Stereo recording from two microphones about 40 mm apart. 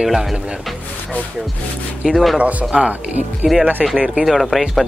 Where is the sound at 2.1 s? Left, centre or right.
Centre.